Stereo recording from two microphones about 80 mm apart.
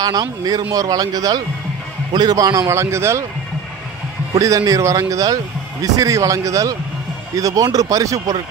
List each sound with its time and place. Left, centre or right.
0.0 s a man's voice: right
4.4 s speech: right